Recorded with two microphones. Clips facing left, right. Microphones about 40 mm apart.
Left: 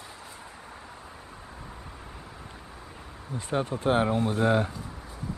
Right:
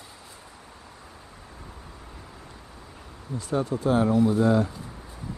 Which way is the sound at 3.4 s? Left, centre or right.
Left.